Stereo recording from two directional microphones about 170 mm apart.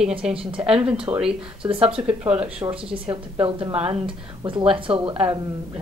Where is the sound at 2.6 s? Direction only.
30° right (ahead or behind).